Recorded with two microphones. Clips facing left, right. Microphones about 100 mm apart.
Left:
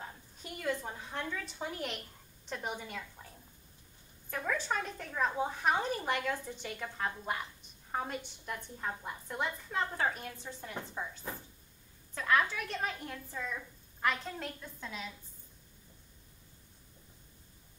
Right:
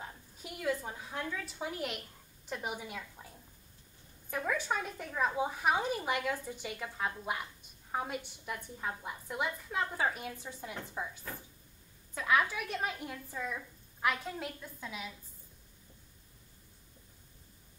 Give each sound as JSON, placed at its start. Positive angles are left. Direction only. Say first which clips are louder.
{"t": 0.0, "sound": "a woman's voice", "louder": "even", "side_deg": -5}
{"t": 11.3, "sound": "speech", "louder": "left 2 dB", "side_deg": 20}
{"t": 12.1, "sound": "a woman's voice", "louder": "even", "side_deg": -5}